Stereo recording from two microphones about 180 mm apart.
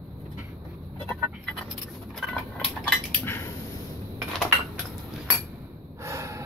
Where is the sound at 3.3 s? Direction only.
15° left (ahead or behind).